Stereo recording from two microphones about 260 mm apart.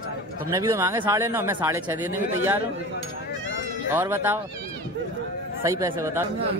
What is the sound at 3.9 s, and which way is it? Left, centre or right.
Speech, centre.